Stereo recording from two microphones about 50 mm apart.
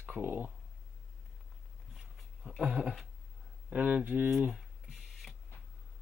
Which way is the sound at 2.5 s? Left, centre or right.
Centre.